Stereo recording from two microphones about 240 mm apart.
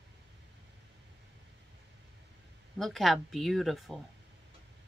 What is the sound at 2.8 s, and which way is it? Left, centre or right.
Speech, centre.